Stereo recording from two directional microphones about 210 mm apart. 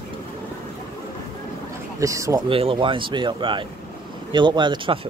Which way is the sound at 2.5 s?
25° right (ahead or behind).